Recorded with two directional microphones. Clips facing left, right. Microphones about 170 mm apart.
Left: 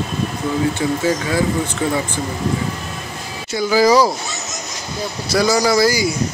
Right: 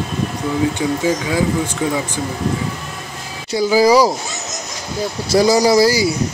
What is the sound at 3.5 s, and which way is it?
Speech, 35° right (ahead or behind).